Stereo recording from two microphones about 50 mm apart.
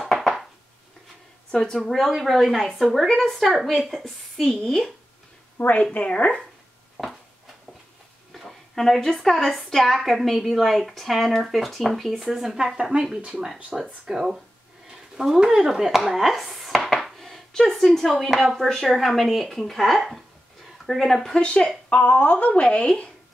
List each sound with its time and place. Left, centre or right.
0.0 s a sound: centre
1.5 s a woman's voice: centre
1.9 s a woman's voice: centre
5.6 s speech: left
8.3 s a woman's voice: centre
16.1 s a sound: centre
18.2 s a woman's voice: centre
21.4 s speech: left